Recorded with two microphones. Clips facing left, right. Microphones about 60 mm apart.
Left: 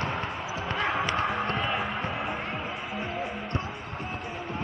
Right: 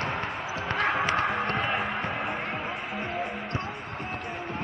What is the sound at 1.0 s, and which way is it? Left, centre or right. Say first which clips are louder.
Music: right 2 dB; right.